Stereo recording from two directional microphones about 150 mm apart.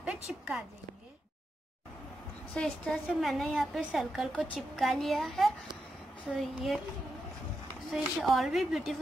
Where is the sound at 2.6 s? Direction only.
5° left (ahead or behind).